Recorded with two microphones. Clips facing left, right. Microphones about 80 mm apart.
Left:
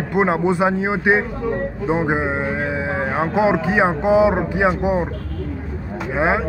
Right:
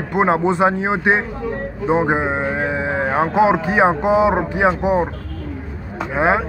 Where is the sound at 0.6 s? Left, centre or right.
Right.